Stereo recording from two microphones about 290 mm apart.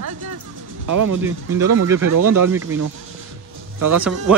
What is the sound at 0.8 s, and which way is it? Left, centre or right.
Speech, right.